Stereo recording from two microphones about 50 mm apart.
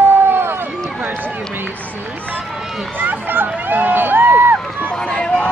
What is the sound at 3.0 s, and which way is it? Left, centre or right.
Run, right.